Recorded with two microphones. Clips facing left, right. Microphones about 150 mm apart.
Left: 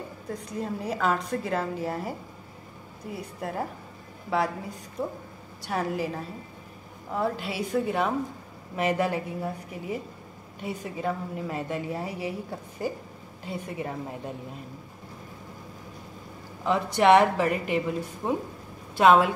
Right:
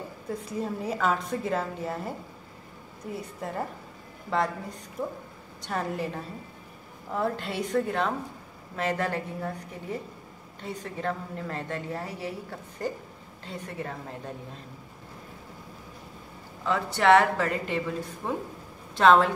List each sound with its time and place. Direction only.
0.3 s a woman's voice: 5° right (ahead or behind); by 14.3 s 15° left (ahead or behind)
16.6 s a woman's voice: 15° left (ahead or behind)